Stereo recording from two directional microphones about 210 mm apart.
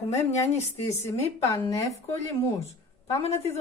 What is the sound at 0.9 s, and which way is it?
Speech, 10° left (ahead or behind).